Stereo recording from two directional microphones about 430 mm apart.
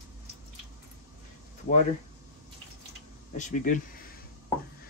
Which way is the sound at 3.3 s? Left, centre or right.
Centre.